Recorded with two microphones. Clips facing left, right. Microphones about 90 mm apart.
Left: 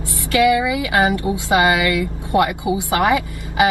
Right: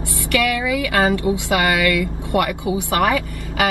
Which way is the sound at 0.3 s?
15° left (ahead or behind).